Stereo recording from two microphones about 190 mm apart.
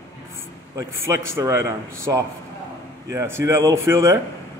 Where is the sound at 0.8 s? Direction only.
15° right (ahead or behind).